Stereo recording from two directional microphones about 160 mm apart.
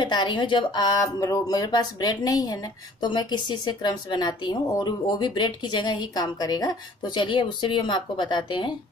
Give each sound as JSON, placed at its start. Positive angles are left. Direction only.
{"t": 0.0, "sound": "speech", "side_deg": 30}